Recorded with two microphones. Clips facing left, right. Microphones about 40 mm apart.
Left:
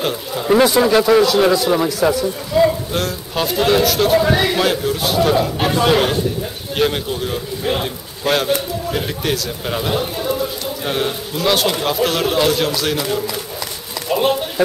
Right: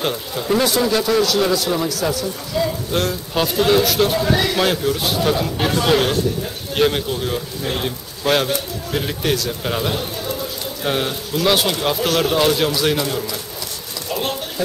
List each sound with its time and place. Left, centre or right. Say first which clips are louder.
0.0 s speech: left 2 dB; centre
0.6 s speech: left 5 dB; left
2.9 s a man's voice: right 1 dB; centre
4.2 s speech: left 3 dB; centre
4.6 s a man's voice: left 1 dB; centre
9.9 s a sound: left 5 dB; centre
10.8 s a man's voice: even; centre
13.0 s speech: left 2 dB; centre
14.0 s insect: left 7 dB; centre